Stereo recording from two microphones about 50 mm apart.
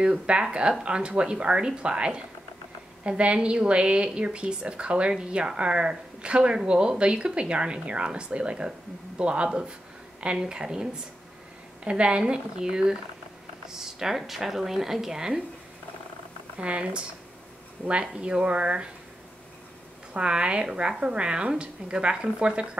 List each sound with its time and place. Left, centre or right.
0.0 s a woman's voice: centre
16.5 s a woman's voice: right
20.2 s a woman's voice: centre